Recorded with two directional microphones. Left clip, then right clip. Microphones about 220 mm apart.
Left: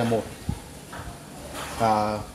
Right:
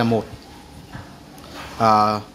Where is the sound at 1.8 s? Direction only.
35° right (ahead or behind).